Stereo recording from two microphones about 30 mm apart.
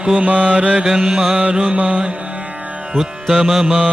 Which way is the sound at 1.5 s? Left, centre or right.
Right.